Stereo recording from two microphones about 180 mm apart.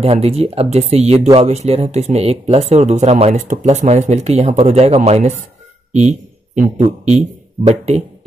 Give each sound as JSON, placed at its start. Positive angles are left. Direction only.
{"t": 0.0, "sound": "speech", "side_deg": -35}
{"t": 5.9, "sound": "a sound", "side_deg": -40}
{"t": 7.1, "sound": "speech", "side_deg": -35}